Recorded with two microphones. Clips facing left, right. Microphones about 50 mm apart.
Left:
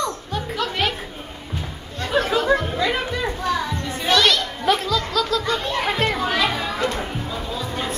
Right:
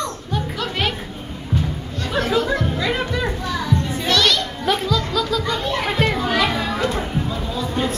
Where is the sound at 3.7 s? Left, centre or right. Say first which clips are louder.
Right 1 dB; centre.